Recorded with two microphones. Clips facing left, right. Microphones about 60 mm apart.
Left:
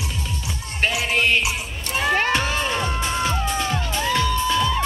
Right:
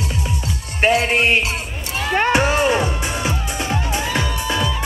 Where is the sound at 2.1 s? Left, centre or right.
Centre.